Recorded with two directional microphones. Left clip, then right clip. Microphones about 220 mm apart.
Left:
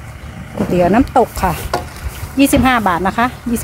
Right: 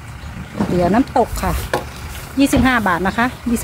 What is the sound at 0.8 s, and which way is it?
Speech, 30° left (ahead or behind).